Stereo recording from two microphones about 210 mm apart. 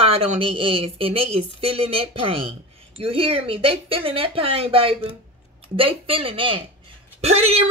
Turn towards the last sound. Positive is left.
turn(degrees=-30)  # may be behind; listen again after turning